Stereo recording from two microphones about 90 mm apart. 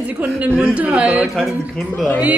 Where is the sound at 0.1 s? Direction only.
15° right (ahead or behind).